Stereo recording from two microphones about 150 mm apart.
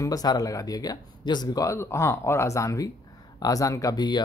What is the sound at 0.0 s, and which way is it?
Speech, 25° left (ahead or behind).